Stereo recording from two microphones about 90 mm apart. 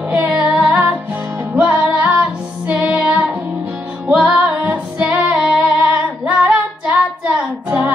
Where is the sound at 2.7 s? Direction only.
15° right (ahead or behind).